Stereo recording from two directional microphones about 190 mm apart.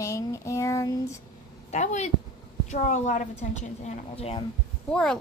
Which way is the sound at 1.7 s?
40° left (ahead or behind).